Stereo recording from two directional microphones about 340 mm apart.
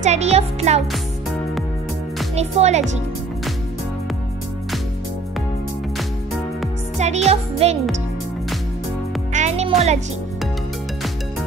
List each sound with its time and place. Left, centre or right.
0.0 s music: centre
2.3 s music: centre
7.0 s music: centre
9.3 s music: centre